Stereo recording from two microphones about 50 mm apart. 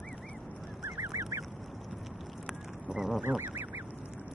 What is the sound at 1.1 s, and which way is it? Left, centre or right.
Goose, right.